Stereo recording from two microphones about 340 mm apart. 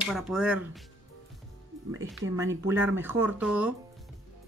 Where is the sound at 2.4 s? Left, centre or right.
Centre.